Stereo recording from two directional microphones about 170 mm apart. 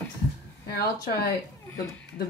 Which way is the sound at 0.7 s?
65° left (ahead or behind).